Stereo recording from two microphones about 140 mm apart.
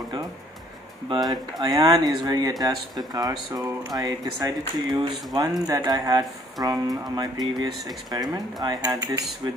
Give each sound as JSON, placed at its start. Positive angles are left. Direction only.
{"t": 1.0, "sound": "speech", "side_deg": -30}